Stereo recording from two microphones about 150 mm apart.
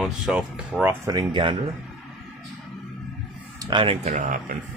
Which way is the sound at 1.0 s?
25° right (ahead or behind).